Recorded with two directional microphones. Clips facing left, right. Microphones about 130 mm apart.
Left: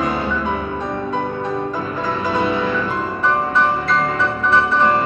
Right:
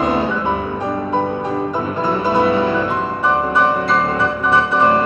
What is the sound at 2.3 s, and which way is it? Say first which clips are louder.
Music: right 4 dB; 25° right (ahead or behind).